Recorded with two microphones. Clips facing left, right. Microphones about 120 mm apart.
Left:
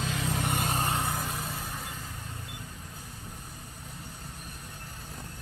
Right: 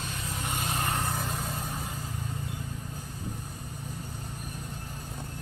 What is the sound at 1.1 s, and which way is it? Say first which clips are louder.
Vehicle: right 1 dB; centre (ahead or behind).